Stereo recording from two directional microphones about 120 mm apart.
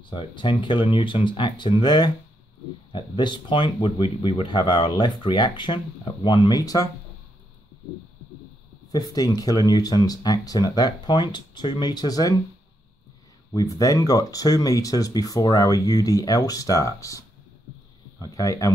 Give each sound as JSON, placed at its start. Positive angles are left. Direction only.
{"t": 0.0, "sound": "speech", "side_deg": 40}
{"t": 6.2, "sound": "speech", "side_deg": 55}
{"t": 6.5, "sound": "speech", "side_deg": 30}
{"t": 8.9, "sound": "speech", "side_deg": 30}
{"t": 13.5, "sound": "speech", "side_deg": 30}
{"t": 18.2, "sound": "speech", "side_deg": 30}